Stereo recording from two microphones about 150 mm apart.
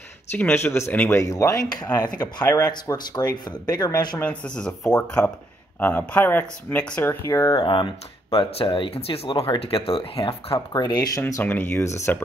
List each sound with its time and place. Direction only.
0.4 s speech: 15° left (ahead or behind)
4.2 s speech: 5° left (ahead or behind); by 10.6 s 40° left (ahead or behind)
10.7 s speech: 25° left (ahead or behind)
11.4 s speech: 10° left (ahead or behind)